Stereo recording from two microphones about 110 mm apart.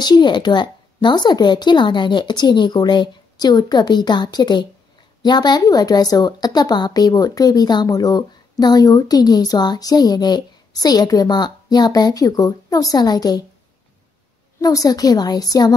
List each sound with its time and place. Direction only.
0.0 s a woman's voice: 40° left (ahead or behind)
14.6 s a woman's voice: 30° left (ahead or behind)